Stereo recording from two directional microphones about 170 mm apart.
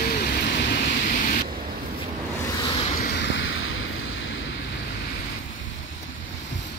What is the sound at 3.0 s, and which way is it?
Vehicle, 85° left.